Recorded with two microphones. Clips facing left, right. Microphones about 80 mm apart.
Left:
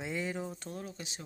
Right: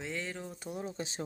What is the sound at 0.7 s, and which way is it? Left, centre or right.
Speech, right.